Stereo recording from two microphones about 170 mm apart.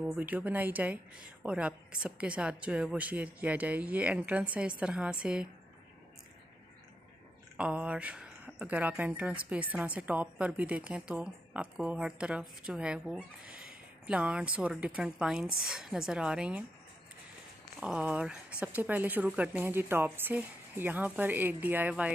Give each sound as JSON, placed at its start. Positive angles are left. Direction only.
{"t": 0.0, "sound": "speech", "side_deg": -10}
{"t": 7.5, "sound": "a woman's voice", "side_deg": -5}
{"t": 17.7, "sound": "a woman's voice", "side_deg": -5}